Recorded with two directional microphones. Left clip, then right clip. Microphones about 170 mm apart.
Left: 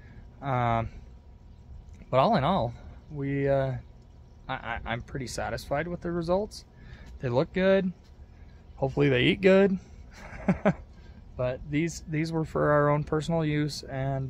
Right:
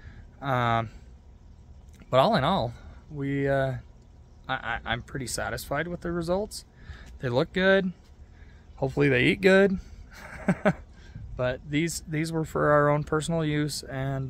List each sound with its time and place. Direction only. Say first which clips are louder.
0.4 s speech: right 2 dB; 15° right (ahead or behind)
2.0 s speech: right 2 dB; 15° right (ahead or behind)